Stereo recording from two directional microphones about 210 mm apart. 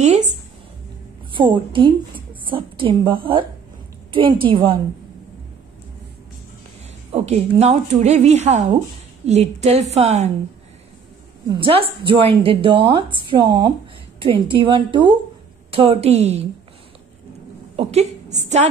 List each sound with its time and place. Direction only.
1.3 s a woman's voice: 25° right (ahead or behind)
7.1 s a woman's voice: 30° right (ahead or behind)
11.4 s a woman's voice: 25° right (ahead or behind)
17.7 s a woman's voice: 30° right (ahead or behind)